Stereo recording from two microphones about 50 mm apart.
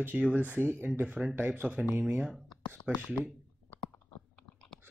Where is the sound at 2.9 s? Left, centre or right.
Right.